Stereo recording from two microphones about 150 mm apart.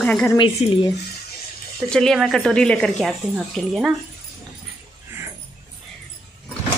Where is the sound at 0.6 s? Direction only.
40° left (ahead or behind).